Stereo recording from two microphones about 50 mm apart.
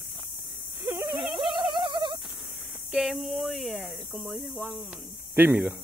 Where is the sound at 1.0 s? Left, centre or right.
Centre.